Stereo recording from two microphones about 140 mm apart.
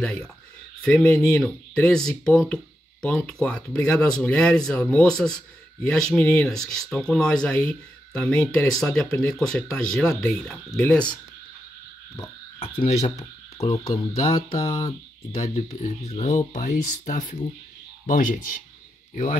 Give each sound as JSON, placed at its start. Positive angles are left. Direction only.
{"t": 0.0, "sound": "speech", "side_deg": 5}
{"t": 12.5, "sound": "frog", "side_deg": 40}
{"t": 13.6, "sound": "speech", "side_deg": 45}
{"t": 18.0, "sound": "speech", "side_deg": 70}